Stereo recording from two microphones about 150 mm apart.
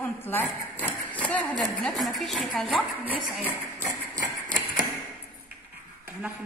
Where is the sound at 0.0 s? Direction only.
15° left (ahead or behind).